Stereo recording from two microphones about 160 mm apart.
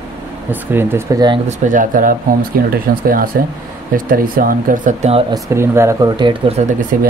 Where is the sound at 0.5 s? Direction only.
15° right (ahead or behind).